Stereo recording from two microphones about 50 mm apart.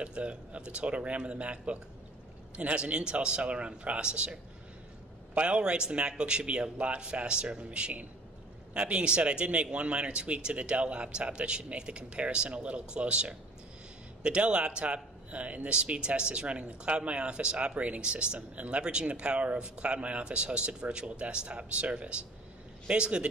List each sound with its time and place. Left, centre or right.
0.0 s speech: right